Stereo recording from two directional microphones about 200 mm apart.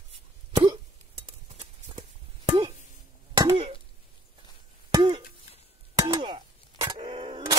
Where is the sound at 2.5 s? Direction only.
25° right (ahead or behind).